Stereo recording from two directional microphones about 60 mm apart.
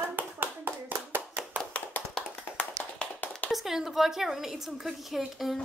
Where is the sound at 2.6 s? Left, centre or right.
Left.